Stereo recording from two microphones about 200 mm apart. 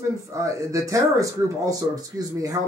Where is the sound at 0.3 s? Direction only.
15° right (ahead or behind).